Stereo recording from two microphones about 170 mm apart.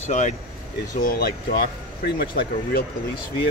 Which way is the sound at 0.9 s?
60° left (ahead or behind).